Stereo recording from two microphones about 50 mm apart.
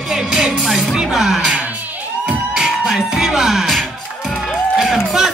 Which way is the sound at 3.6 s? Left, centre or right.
Centre.